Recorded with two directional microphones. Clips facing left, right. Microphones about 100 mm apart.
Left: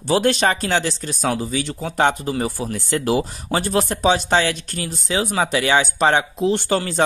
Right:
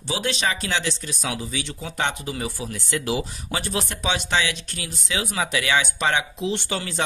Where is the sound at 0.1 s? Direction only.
50° left (ahead or behind).